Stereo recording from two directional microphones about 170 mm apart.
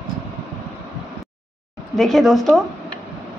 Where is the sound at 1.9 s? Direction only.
Centre (ahead or behind).